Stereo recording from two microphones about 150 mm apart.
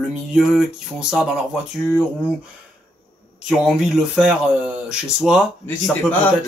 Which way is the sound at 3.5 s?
5° right (ahead or behind).